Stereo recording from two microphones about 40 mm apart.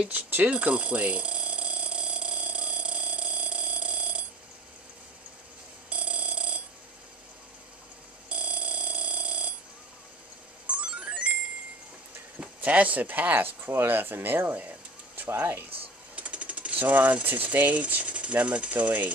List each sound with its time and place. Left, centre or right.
0.1 s speech: right
0.5 s alarm: right
5.9 s alarm: right
8.3 s alarm clock: right
10.7 s music: right
12.6 s speech: right
13.6 s speech: right
13.8 s speech: right
15.2 s speech: right
16.2 s speech: right